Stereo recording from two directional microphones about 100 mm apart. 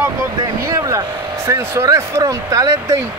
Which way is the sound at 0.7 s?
30° right (ahead or behind).